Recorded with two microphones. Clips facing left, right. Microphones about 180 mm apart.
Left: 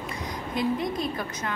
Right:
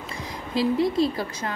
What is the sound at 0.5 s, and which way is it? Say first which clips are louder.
Speech: right 6 dB; 30° right (ahead or behind).